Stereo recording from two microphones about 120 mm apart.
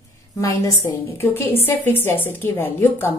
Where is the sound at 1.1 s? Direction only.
20° left (ahead or behind).